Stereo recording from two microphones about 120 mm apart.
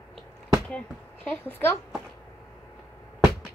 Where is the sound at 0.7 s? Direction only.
10° left (ahead or behind).